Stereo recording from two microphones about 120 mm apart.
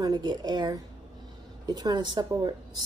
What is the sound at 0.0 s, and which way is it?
A woman's voice, 35° right (ahead or behind).